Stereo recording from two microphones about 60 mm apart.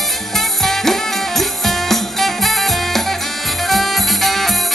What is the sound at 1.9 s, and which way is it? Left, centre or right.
Music, centre.